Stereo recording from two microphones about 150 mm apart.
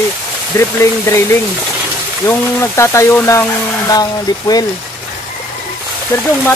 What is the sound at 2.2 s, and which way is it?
Speech, 20° left (ahead or behind).